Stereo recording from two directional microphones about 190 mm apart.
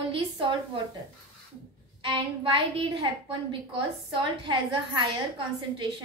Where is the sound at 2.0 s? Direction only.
25° right (ahead or behind).